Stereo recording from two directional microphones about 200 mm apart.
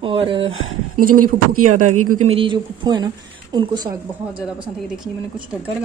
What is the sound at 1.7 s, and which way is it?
Speech, 40° right (ahead or behind).